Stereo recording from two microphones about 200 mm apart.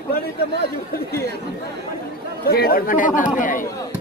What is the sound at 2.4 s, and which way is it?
Speech, 50° left (ahead or behind).